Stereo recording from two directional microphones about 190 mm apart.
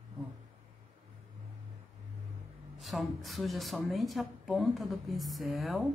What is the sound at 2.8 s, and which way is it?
A woman's voice, centre (ahead or behind).